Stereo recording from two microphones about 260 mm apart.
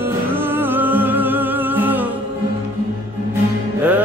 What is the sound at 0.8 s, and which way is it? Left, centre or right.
Music, centre.